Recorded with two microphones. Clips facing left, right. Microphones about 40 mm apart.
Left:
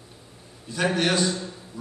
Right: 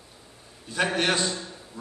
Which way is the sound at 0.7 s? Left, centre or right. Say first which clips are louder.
Left 1 dB; right.